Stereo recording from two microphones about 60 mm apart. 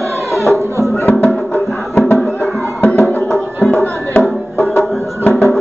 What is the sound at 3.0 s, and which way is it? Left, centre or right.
Music, left.